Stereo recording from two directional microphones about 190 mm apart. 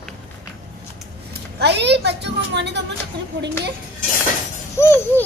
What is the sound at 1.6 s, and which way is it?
A child's voice, 65° right (ahead or behind).